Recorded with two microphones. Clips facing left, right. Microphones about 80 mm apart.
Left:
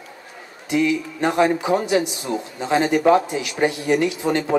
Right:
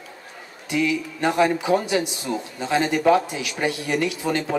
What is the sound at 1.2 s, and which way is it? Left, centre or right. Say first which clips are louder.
Speech: left 1 dB; centre.